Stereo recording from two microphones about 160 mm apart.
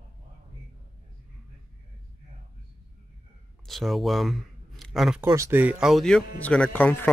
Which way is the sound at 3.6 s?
Centre (ahead or behind).